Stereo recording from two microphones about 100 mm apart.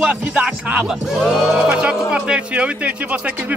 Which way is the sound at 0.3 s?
5° right (ahead or behind).